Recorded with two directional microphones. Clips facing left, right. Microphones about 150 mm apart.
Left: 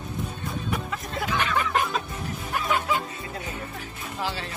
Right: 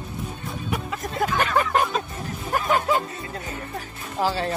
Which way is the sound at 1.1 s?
45° right (ahead or behind).